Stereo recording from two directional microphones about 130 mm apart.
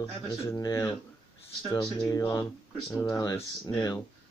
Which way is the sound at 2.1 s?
30° left (ahead or behind).